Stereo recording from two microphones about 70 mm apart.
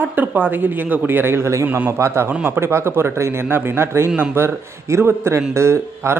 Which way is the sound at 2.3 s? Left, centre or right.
Right.